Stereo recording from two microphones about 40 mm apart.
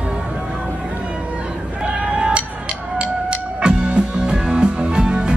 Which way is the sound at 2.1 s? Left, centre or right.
Right.